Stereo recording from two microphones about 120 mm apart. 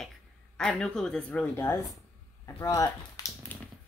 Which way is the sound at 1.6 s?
25° left (ahead or behind).